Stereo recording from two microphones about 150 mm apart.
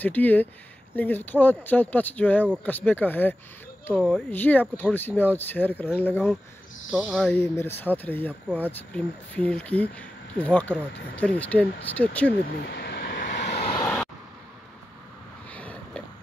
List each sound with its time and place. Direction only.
0.0 s speech: 10° left (ahead or behind)
6.9 s speech: 5° right (ahead or behind)
7.3 s speech: 15° left (ahead or behind)
12.6 s vehicle: 90° left; by 13.7 s 75° left (ahead or behind)
15.5 s a sound: 10° left (ahead or behind)